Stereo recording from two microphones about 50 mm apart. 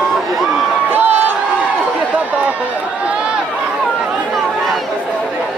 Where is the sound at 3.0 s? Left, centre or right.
Right.